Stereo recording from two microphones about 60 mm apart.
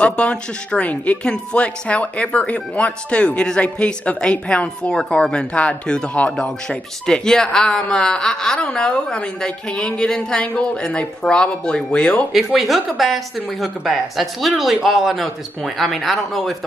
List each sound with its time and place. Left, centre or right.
0.0 s a woman's voice: centre
12.5 s speech: centre